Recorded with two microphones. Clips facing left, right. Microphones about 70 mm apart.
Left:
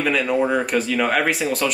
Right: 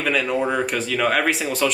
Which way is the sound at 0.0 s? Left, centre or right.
Centre.